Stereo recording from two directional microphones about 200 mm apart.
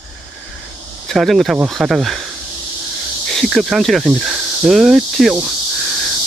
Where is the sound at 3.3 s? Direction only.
Centre (ahead or behind).